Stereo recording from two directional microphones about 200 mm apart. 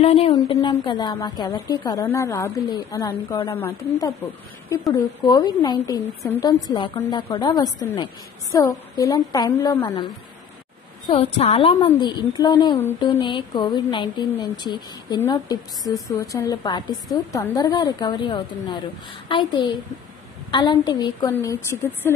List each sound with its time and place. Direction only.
0.0 s a woman's voice: 30° left (ahead or behind); by 22.1 s 10° left (ahead or behind)